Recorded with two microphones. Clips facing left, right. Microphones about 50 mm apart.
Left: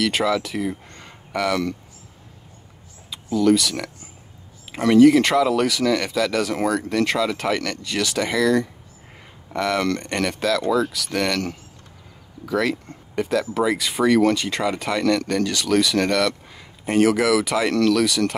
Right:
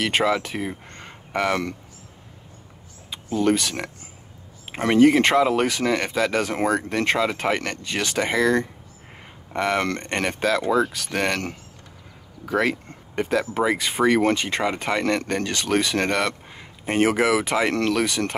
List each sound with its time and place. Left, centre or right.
0.0 s speech: right
3.1 s speech: right